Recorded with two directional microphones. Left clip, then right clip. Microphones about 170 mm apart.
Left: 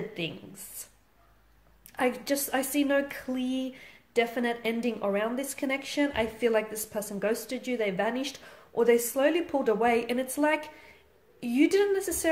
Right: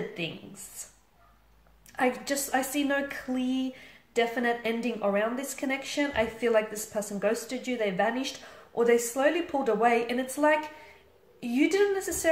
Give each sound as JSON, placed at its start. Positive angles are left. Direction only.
{"t": 0.2, "sound": "speech", "side_deg": 50}
{"t": 2.0, "sound": "speech", "side_deg": 50}